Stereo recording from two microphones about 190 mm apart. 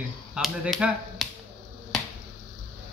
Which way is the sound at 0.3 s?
5° right (ahead or behind).